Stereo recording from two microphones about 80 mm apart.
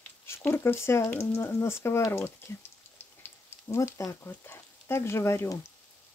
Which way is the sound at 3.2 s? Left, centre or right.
Left.